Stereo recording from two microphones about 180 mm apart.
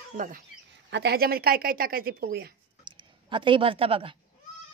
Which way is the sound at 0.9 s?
60° right (ahead or behind).